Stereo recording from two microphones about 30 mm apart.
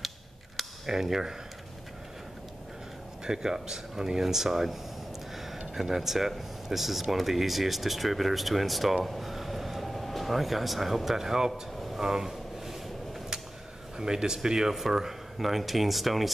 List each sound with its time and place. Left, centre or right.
0.8 s speech: centre
3.3 s speech: centre
5.3 s a sound: centre
5.8 s speech: centre
12.3 s a sound: centre
13.9 s speech: right; by 16.3 s centre